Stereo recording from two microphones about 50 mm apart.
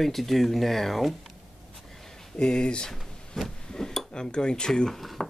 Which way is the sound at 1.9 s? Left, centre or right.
Centre.